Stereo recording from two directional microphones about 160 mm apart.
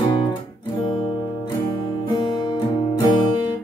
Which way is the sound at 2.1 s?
30° left (ahead or behind).